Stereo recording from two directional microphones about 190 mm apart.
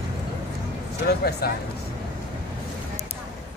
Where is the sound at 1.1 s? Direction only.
55° left (ahead or behind).